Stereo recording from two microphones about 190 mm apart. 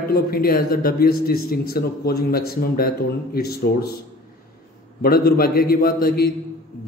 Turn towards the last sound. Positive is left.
turn(degrees=55)  # may be behind; listen again after turning